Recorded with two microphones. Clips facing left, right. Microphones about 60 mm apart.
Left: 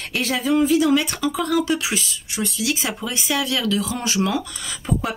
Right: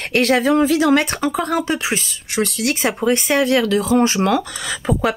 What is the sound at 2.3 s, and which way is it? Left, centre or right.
Speech, right.